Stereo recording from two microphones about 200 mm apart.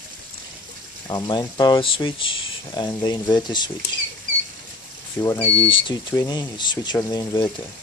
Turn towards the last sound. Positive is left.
turn(degrees=20)  # may be behind; listen again after turning